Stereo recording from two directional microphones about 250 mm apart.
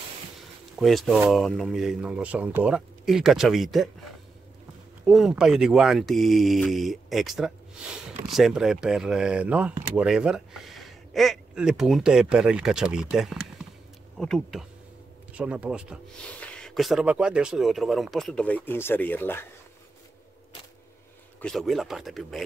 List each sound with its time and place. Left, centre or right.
0.7 s speech: centre
5.0 s speech: centre
21.4 s speech: centre